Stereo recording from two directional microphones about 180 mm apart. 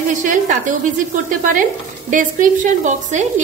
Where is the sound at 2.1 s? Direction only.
45° right (ahead or behind).